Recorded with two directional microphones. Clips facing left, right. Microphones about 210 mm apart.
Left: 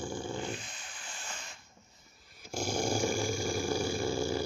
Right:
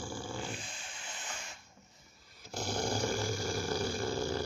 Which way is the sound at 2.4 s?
15° left (ahead or behind).